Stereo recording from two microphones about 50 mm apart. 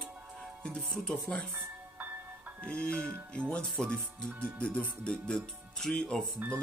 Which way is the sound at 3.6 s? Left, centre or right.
Centre.